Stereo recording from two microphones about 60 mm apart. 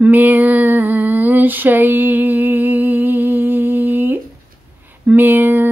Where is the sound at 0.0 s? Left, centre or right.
Right.